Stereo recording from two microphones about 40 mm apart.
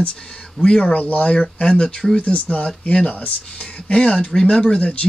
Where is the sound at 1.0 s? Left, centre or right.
Left.